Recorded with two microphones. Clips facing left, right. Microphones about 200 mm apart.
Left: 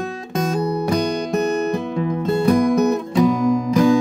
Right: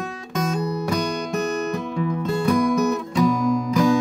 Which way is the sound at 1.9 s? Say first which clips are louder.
Left 2 dB; 35° left (ahead or behind).